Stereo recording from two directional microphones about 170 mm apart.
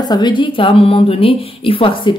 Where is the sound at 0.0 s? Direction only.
25° left (ahead or behind).